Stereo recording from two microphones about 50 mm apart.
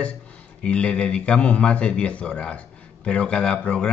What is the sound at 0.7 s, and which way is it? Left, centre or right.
A man's voice, left.